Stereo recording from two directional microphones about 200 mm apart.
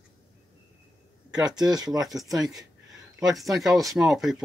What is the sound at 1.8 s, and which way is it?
Speech, centre (ahead or behind).